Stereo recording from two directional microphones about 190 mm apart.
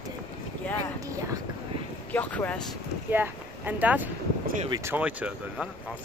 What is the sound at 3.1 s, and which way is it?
Speech, 10° right (ahead or behind).